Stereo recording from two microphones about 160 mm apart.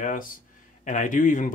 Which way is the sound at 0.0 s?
55° left (ahead or behind).